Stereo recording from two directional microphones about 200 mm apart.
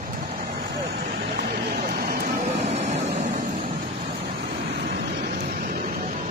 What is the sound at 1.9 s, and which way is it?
Vehicle, 50° right (ahead or behind).